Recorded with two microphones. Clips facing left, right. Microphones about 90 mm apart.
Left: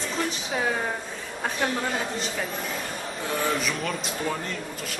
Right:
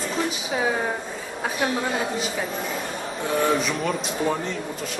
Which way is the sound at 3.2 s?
Centre (ahead or behind).